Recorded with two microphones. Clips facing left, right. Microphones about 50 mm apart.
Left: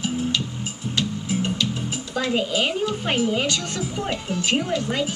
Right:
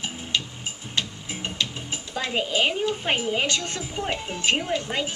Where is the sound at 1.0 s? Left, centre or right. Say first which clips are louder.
Left 5 dB; right.